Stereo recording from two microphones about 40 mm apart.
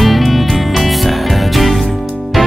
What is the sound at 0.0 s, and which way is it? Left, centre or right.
Music, centre.